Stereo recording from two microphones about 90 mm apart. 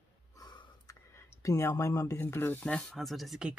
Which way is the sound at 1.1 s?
35° left (ahead or behind).